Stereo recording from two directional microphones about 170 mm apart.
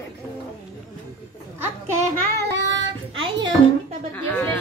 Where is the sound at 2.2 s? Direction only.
85° right.